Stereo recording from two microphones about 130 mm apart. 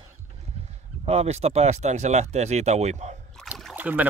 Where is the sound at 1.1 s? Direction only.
55° right (ahead or behind).